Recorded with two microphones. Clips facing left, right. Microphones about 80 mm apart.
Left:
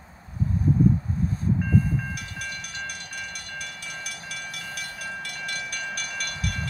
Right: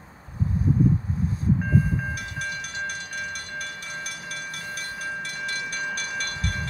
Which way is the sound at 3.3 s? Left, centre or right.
Right.